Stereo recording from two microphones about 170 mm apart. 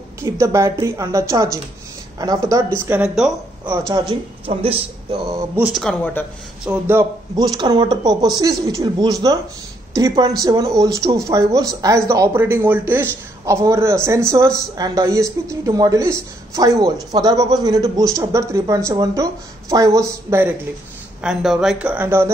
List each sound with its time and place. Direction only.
0.2 s a woman's voice: 15° right (ahead or behind)
4.1 s a man's voice: 30° right (ahead or behind)
5.6 s speech: centre (ahead or behind)
6.6 s a woman's voice: 10° right (ahead or behind)
21.2 s a woman's voice: 5° right (ahead or behind)